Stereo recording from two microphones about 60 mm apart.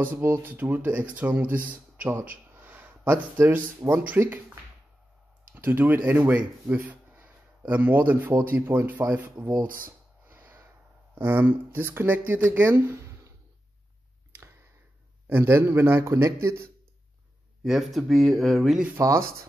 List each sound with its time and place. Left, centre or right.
0.0 s speech: right
2.0 s speech: right
5.5 s speech: right
10.2 s snort: right
11.1 s speech: right
12.9 s a sound: right
14.3 s a sound: right
15.2 s a man's voice: right
17.6 s speech: centre
18.9 s speech: right